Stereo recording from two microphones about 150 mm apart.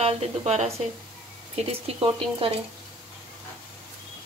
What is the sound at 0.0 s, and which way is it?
Speech, 45° right (ahead or behind).